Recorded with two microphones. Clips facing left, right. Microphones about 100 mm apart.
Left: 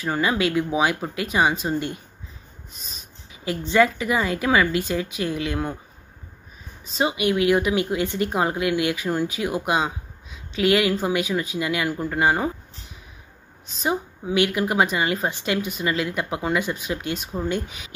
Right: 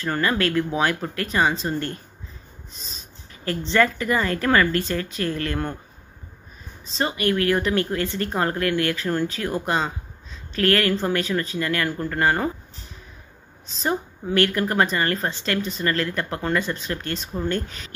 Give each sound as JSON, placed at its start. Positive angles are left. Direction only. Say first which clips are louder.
{"t": 0.0, "sound": "speech", "louder": "even", "side_deg": 10}
{"t": 2.7, "sound": "snort", "louder": "right 1 dB", "side_deg": 5}
{"t": 3.4, "sound": "speech", "louder": "left 1 dB", "side_deg": 10}
{"t": 7.0, "sound": "speech", "louder": "left 1 dB", "side_deg": 10}
{"t": 13.7, "sound": "speech", "louder": "even", "side_deg": 5}